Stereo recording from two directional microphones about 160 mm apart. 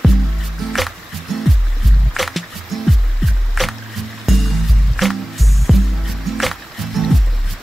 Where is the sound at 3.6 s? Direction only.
Centre (ahead or behind).